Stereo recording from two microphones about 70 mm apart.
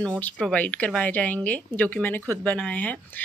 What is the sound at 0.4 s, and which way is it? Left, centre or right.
Speech, centre.